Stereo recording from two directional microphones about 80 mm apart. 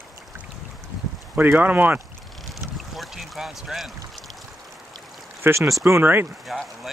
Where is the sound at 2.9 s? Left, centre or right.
Centre.